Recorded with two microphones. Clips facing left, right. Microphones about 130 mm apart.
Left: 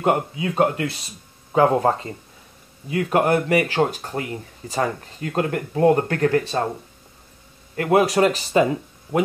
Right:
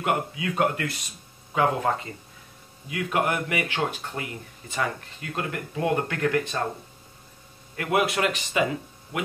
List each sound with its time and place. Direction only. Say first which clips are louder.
0.0 s speech: left 6 dB; 30° left (ahead or behind)
7.7 s speech: left 7 dB; 35° left (ahead or behind)